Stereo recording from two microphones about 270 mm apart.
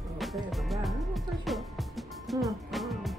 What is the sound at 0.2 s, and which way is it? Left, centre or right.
Music, centre.